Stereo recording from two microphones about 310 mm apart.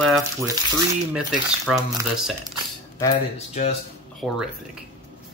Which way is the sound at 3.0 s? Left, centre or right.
Centre.